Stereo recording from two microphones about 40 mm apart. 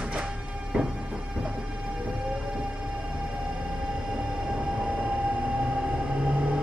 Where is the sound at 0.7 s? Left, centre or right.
Right.